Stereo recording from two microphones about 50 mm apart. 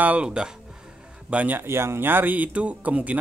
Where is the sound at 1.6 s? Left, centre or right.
Right.